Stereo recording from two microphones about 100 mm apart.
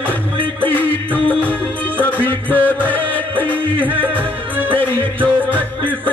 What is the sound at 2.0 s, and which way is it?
Music, 15° left (ahead or behind).